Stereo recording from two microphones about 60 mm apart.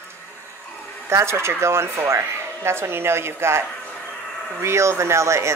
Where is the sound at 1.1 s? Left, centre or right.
Right.